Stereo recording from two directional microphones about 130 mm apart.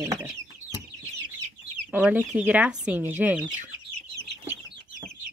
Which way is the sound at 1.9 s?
15° right (ahead or behind).